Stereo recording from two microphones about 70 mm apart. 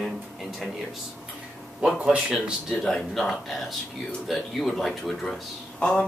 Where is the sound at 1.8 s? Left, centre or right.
Centre.